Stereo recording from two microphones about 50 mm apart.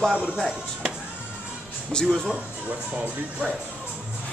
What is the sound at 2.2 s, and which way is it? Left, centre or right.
Speech, right.